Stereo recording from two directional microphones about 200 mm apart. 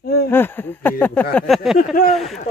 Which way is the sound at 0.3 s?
10° left (ahead or behind).